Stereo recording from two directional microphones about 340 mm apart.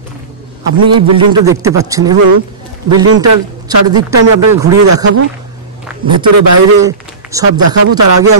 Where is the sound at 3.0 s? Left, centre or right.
Right.